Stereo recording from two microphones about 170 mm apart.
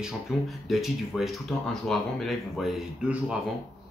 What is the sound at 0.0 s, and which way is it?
Speech, centre (ahead or behind).